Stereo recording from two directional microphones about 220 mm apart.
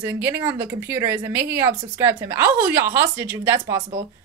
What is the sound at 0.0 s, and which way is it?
Speech, 10° right (ahead or behind).